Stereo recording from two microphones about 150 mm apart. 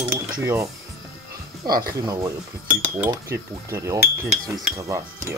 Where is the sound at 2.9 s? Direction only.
15° right (ahead or behind).